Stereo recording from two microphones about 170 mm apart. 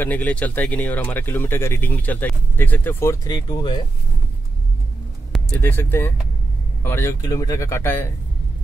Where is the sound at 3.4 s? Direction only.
30° left (ahead or behind).